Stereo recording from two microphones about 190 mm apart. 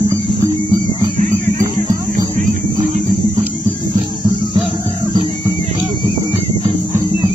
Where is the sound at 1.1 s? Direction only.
45° right (ahead or behind).